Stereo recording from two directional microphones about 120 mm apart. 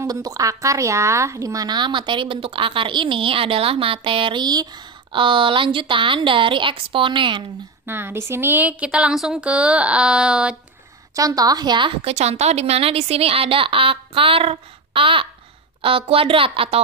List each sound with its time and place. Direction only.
0.0 s a woman's voice: 30° right (ahead or behind)
7.8 s speech: 20° right (ahead or behind)
11.1 s speech: 30° right (ahead or behind)
12.0 s a woman's voice: 65° right (ahead or behind)